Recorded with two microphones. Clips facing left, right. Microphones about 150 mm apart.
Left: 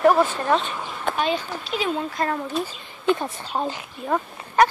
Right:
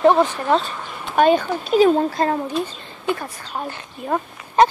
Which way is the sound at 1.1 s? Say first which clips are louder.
Right 9 dB; 50° right (ahead or behind).